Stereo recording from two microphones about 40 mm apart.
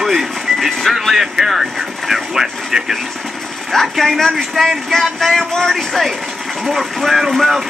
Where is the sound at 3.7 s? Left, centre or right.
Centre.